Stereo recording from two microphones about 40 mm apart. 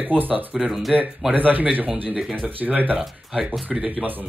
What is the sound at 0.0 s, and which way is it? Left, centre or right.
Speech, right.